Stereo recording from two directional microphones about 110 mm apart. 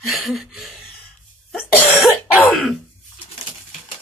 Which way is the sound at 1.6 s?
15° left (ahead or behind).